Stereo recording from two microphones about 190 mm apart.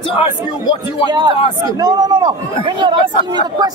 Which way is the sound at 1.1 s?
25° right (ahead or behind).